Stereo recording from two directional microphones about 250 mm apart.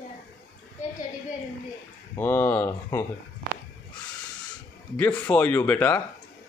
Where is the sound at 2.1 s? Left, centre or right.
Centre.